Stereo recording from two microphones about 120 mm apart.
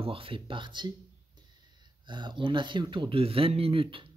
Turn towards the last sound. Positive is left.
turn(degrees=-50)  # may be behind; listen again after turning